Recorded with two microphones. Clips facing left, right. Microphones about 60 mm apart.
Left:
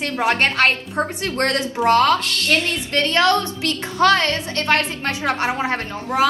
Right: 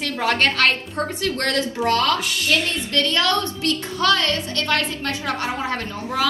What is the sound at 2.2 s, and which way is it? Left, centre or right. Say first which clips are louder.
Speech: left 1 dB; centre.